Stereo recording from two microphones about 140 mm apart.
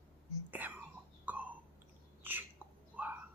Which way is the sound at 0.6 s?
15° right (ahead or behind).